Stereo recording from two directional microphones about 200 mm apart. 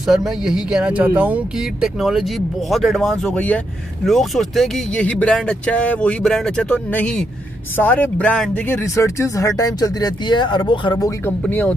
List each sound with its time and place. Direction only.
0.0 s speech: centre (ahead or behind); by 11.3 s 15° left (ahead or behind)
11.4 s speech: 5° left (ahead or behind)